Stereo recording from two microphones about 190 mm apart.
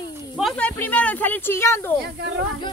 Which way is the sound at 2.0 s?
65° right (ahead or behind).